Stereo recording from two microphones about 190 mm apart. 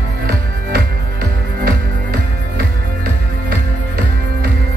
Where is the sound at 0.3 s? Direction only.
55° right (ahead or behind).